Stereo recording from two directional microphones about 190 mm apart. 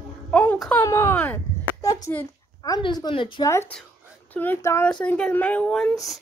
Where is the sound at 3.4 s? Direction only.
15° left (ahead or behind).